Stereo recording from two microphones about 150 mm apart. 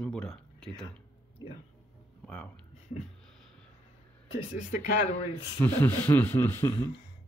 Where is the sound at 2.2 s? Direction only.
10° left (ahead or behind).